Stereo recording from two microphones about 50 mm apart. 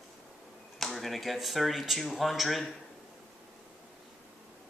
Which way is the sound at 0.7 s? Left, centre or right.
Centre.